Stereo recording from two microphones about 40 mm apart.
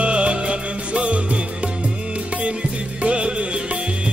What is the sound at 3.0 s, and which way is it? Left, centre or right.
Music, right.